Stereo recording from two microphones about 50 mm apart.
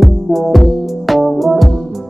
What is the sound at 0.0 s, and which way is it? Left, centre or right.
Music, centre.